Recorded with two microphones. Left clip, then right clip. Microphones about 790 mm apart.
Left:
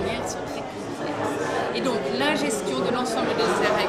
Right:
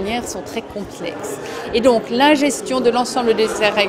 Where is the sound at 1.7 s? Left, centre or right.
Right.